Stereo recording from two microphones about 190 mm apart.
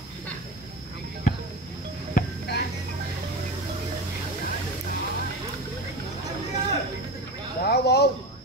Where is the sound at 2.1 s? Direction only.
60° left (ahead or behind).